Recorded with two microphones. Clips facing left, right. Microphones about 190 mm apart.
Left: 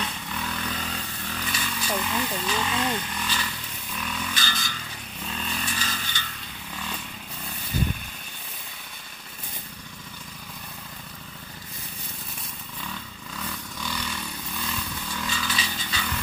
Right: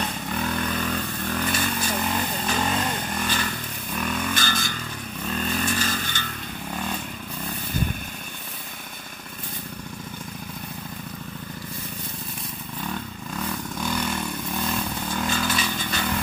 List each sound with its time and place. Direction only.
0.0 s vehicle: 50° right (ahead or behind)
6.7 s motorcycle: 50° right (ahead or behind)
12.8 s motorcycle: 50° right (ahead or behind)